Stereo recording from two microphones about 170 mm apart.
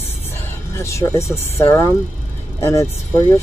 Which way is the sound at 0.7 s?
15° left (ahead or behind).